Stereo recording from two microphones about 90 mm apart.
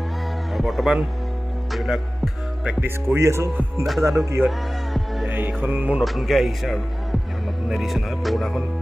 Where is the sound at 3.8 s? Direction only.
Centre (ahead or behind).